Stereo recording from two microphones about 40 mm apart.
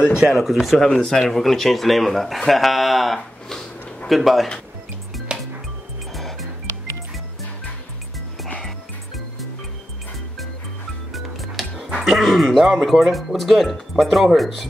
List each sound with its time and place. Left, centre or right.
0.3 s speech: centre
0.9 s speech: centre
5.3 s music: right
8.6 s music: centre
11.1 s speech: centre